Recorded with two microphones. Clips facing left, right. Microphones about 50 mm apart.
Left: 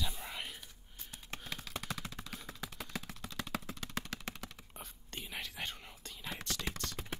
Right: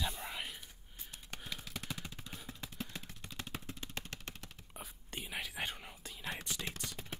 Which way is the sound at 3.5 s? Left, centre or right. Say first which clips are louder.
Left 5 dB; centre.